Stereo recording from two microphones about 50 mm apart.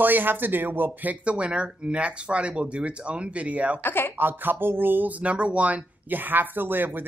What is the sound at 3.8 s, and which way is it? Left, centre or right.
Speech, left.